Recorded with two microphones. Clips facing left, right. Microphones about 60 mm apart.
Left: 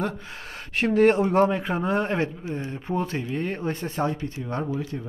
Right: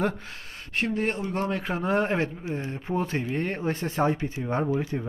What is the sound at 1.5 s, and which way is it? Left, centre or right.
Speech, centre.